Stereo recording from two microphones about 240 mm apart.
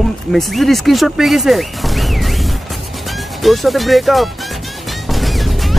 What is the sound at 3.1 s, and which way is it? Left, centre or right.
Music, centre.